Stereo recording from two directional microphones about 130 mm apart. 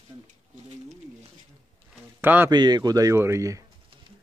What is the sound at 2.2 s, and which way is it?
Speech, 15° right (ahead or behind).